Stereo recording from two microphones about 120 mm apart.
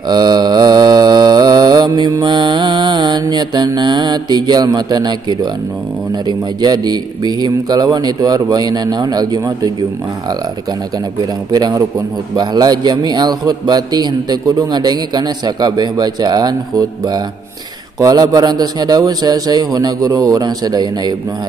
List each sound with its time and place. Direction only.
0.1 s mantra: 35° right (ahead or behind)
6.2 s a man's voice: 35° right (ahead or behind)
11.5 s a man's voice: 35° right (ahead or behind)